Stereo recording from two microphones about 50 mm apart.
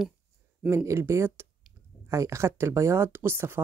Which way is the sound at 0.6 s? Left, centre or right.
Right.